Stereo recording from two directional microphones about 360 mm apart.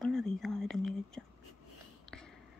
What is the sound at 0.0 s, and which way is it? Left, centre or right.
Whispering, centre.